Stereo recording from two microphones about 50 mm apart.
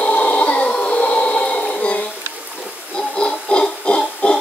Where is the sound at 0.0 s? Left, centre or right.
Left.